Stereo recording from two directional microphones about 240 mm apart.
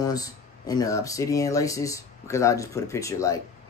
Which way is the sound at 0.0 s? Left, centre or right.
Centre.